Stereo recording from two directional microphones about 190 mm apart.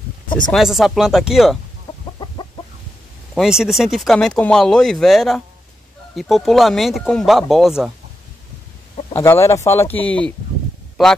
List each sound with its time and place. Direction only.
0.5 s speech: centre (ahead or behind)
3.3 s speech: 5° right (ahead or behind)
9.1 s speech: 15° left (ahead or behind)